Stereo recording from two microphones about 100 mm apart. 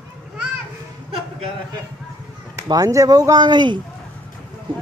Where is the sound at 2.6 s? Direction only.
40° right (ahead or behind).